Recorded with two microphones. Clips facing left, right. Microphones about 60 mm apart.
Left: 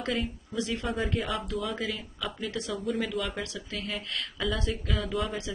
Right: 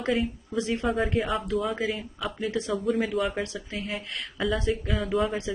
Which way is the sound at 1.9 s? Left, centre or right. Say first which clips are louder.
Right 4 dB; right.